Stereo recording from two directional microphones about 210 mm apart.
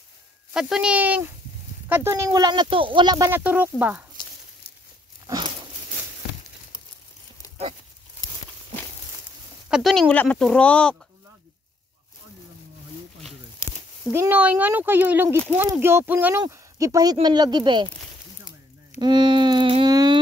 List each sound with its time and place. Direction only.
0.5 s speech: 5° right (ahead or behind)
5.2 s a sound: 20° right (ahead or behind)
9.7 s speech: centre (ahead or behind)
13.6 s a sound: 15° left (ahead or behind)
14.1 s speech: 10° right (ahead or behind)
18.9 s music: 20° right (ahead or behind)